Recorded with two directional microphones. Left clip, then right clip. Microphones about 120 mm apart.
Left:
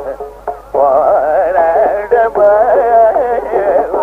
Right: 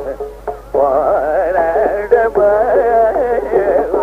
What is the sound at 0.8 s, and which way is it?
Music, 25° right (ahead or behind).